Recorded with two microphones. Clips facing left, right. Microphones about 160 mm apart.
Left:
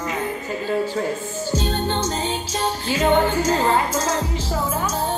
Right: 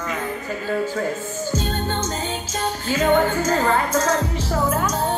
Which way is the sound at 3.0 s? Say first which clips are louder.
Even; 25° left (ahead or behind).